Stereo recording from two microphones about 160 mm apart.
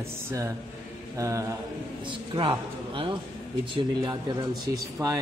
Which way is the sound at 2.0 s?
30° right (ahead or behind).